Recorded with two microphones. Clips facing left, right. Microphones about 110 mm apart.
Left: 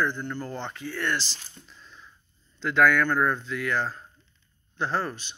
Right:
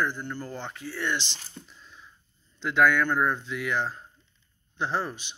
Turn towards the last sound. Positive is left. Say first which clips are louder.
# left 1 dB
turn(degrees=-15)  # may be behind; listen again after turning